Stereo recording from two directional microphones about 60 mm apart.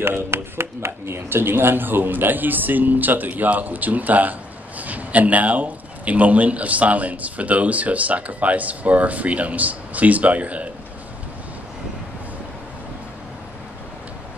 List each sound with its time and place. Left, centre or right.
0.0 s speech: right